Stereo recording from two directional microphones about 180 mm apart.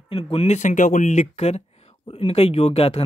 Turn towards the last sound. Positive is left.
turn(degrees=35)  # may be behind; listen again after turning